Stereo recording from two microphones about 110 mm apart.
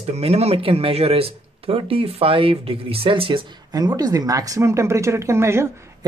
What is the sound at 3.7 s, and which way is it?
Speech, 35° right (ahead or behind).